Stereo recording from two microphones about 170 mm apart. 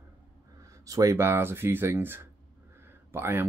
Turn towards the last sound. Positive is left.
turn(degrees=-15)  # may be behind; listen again after turning